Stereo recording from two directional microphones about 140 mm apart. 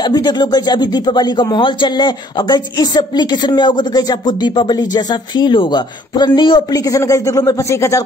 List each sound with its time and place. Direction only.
0.1 s speech: 30° left (ahead or behind)
6.9 s speech: 25° left (ahead or behind)